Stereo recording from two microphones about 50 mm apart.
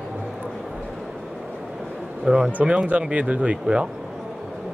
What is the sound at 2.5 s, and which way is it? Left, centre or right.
Speech, right.